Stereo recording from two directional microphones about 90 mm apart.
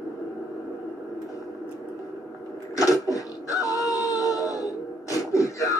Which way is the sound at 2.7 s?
40° left (ahead or behind).